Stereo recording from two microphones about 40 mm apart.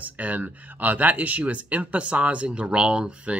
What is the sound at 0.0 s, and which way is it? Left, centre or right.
Speech, right.